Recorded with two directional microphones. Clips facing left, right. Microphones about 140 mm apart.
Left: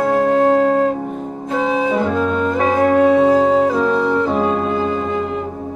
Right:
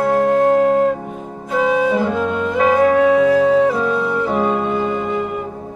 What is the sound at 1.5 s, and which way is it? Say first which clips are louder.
Flute: right 2 dB; centre (ahead or behind).